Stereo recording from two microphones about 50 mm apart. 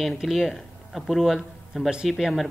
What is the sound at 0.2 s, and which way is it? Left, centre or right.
Speech, centre.